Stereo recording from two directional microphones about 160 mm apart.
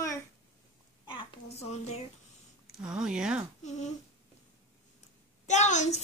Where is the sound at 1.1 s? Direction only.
35° left (ahead or behind).